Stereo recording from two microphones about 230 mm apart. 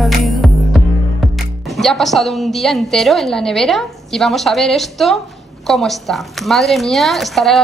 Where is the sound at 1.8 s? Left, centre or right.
Centre.